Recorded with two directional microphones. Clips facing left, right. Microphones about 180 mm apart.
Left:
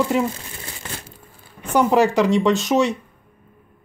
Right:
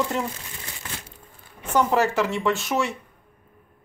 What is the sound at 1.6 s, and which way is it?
Speech, 15° left (ahead or behind).